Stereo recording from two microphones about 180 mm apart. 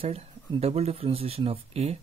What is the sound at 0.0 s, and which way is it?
Speech, 35° right (ahead or behind).